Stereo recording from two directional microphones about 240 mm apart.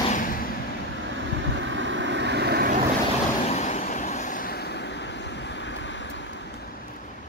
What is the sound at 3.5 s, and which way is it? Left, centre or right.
Vehicle, left.